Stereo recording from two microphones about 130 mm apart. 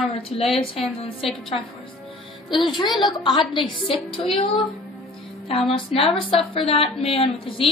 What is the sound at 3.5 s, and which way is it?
Speech, 40° left (ahead or behind).